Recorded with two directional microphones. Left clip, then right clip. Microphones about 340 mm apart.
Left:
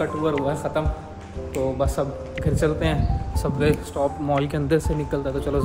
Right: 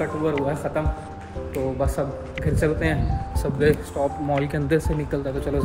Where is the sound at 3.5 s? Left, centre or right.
Centre.